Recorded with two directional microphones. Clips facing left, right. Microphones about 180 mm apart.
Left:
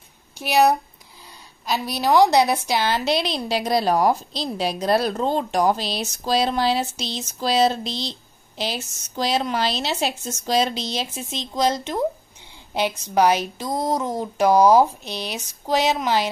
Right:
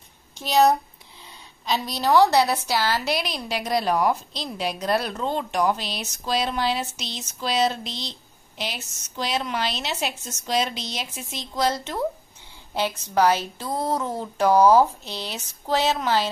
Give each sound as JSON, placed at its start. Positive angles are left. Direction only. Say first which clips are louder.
{"t": 0.4, "sound": "a woman's voice", "louder": "left 1 dB", "side_deg": 10}